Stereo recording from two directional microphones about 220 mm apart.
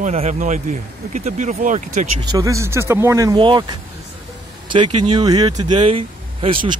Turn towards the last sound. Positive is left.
turn(degrees=-20)  # may be behind; listen again after turning